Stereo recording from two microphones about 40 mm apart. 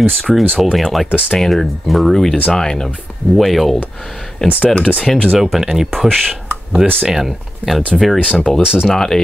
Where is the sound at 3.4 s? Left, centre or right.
Centre.